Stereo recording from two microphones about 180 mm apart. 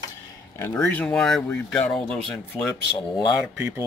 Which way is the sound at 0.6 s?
10° left (ahead or behind).